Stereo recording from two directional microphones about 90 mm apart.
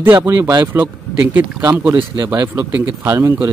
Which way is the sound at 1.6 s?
30° right (ahead or behind).